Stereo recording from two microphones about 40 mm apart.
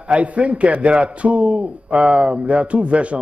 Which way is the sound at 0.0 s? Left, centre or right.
Right.